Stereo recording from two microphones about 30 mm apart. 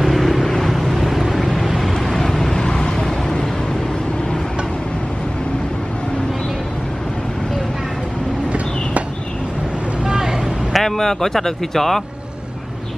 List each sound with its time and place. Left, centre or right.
0.0 s vehicle: centre
8.5 s a sound: right
10.0 s vehicle: centre
10.7 s speech: centre